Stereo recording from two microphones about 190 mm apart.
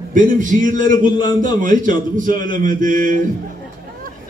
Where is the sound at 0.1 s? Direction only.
45° right (ahead or behind).